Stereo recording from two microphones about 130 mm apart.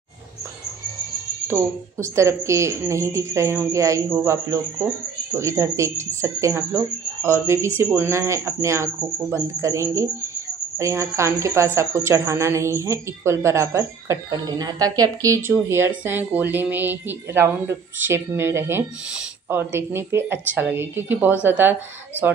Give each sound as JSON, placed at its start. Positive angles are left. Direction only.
{"t": 1.5, "sound": "a woman's voice", "side_deg": -20}